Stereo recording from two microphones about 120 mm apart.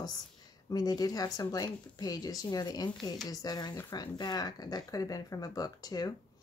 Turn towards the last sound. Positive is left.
turn(degrees=30)  # may be behind; listen again after turning